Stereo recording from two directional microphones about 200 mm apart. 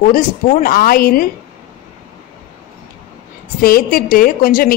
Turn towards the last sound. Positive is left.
turn(degrees=45)  # may be behind; listen again after turning